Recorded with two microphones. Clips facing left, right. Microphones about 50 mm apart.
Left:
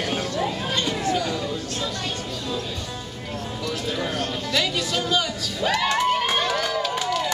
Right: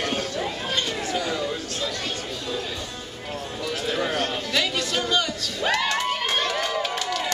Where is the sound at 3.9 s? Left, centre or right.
Right.